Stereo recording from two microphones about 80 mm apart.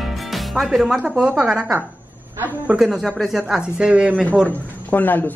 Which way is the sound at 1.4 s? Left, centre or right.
Centre.